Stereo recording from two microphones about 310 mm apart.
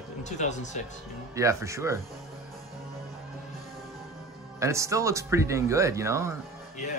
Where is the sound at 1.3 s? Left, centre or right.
Centre.